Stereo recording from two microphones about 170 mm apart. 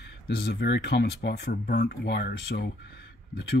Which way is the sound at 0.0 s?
75° left (ahead or behind).